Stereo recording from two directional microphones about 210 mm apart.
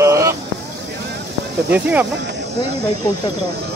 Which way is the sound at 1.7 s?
5° right (ahead or behind).